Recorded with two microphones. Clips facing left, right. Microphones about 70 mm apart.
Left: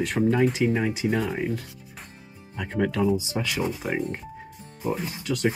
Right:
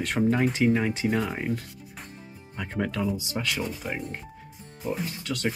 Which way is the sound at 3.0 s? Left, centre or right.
Left.